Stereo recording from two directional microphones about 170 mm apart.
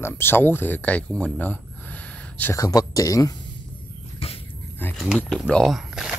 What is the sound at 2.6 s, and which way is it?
Speech, 20° left (ahead or behind).